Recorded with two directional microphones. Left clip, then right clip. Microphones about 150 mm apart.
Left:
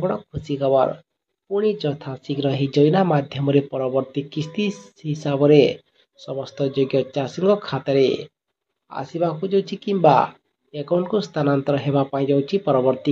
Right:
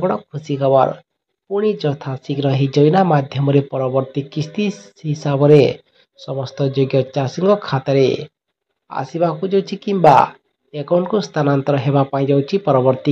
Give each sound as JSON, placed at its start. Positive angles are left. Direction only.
{"t": 0.0, "sound": "speech", "side_deg": -10}